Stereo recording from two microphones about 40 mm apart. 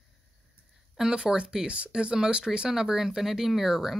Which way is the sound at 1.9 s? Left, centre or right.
Right.